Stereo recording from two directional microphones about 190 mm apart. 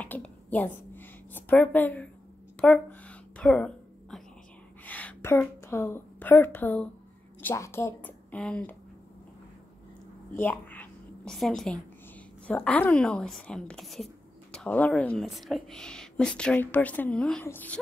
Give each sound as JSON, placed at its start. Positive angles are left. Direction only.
{"t": 0.0, "sound": "a sound", "side_deg": 10}
{"t": 4.8, "sound": "a woman's voice", "side_deg": 10}
{"t": 10.3, "sound": "a woman's voice", "side_deg": 10}